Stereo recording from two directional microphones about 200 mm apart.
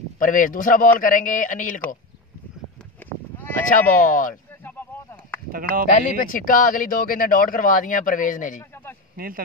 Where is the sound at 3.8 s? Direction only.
40° left (ahead or behind).